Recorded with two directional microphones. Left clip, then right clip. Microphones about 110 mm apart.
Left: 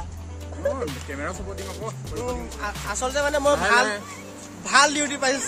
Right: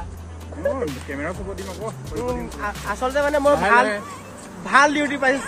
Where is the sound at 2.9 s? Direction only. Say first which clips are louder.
Right 3 dB; 20° left (ahead or behind).